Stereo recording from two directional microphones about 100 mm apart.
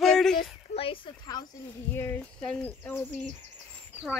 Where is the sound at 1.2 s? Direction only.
45° left (ahead or behind).